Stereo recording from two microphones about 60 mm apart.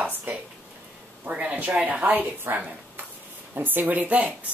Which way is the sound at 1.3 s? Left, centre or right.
Right.